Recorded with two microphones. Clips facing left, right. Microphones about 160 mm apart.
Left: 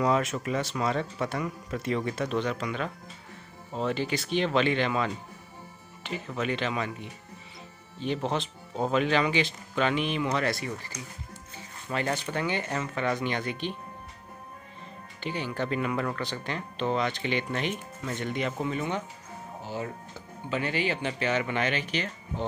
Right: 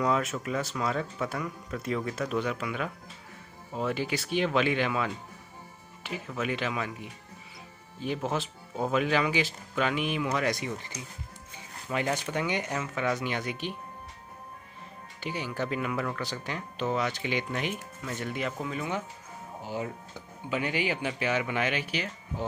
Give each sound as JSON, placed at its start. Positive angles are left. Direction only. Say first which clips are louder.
{"t": 0.0, "sound": "speech", "louder": "left 2 dB", "side_deg": 0}
{"t": 15.1, "sound": "speech", "louder": "left 1 dB", "side_deg": -10}
{"t": 19.6, "sound": "speech", "louder": "right 1 dB", "side_deg": -15}